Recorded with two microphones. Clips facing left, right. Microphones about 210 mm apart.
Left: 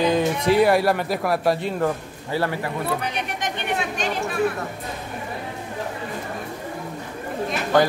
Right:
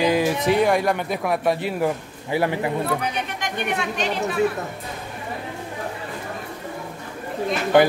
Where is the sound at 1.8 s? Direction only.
15° right (ahead or behind).